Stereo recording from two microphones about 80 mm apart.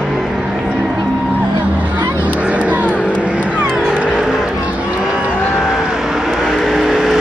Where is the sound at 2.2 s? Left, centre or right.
Centre.